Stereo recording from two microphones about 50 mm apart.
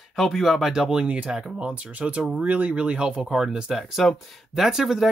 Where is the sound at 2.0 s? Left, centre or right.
Right.